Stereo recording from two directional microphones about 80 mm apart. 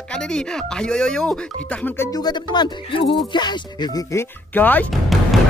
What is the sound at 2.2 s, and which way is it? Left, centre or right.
Speech, left.